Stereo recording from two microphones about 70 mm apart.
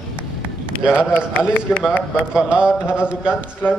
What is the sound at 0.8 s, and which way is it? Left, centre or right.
Speech, centre.